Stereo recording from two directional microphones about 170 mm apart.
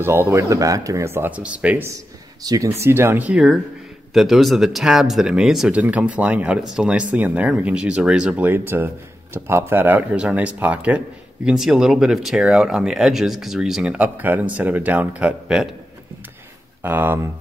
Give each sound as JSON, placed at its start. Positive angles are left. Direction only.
{"t": 0.0, "sound": "speech", "side_deg": -15}
{"t": 2.4, "sound": "speech", "side_deg": -20}
{"t": 16.8, "sound": "speech", "side_deg": -10}